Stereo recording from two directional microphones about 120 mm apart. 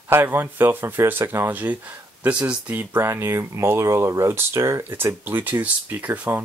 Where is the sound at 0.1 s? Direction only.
20° right (ahead or behind).